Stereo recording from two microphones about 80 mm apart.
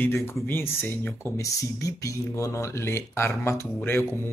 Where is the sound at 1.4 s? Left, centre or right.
Left.